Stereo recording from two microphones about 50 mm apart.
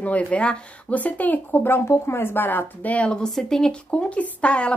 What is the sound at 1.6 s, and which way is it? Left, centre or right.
Speech, left.